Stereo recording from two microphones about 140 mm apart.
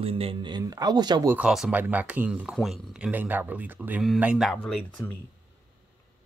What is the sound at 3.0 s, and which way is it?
Speech, 15° right (ahead or behind).